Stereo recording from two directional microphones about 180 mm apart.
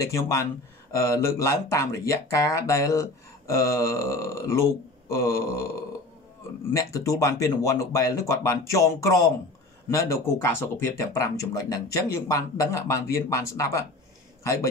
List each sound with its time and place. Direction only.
0.0 s speech: 15° left (ahead or behind)
6.7 s a man's voice: 20° left (ahead or behind)